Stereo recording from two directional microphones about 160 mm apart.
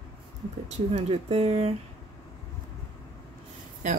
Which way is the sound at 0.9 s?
40° right (ahead or behind).